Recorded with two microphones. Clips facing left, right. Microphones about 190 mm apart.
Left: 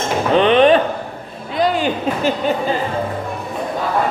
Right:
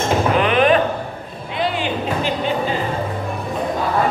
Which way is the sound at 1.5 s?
40° left (ahead or behind).